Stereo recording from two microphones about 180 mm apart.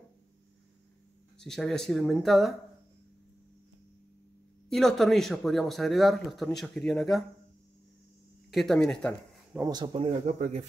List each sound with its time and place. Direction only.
1.4 s speech: 5° left (ahead or behind)
4.6 s speech: centre (ahead or behind)
8.5 s speech: centre (ahead or behind)
9.6 s speech: 25° right (ahead or behind); by 10.7 s 40° right (ahead or behind)